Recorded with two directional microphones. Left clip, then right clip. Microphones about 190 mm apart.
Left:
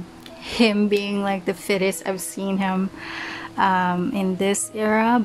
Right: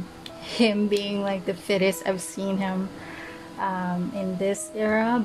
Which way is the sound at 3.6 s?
25° left (ahead or behind).